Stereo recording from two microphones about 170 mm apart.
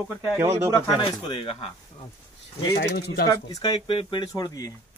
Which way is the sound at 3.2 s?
25° left (ahead or behind).